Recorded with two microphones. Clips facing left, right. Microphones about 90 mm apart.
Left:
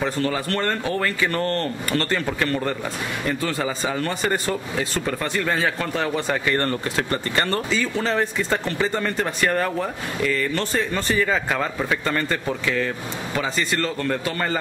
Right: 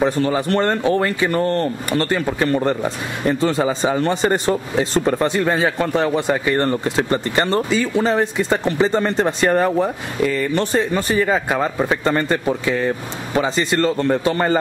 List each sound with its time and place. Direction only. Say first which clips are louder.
0.0 s speech: right 6 dB; 20° right (ahead or behind)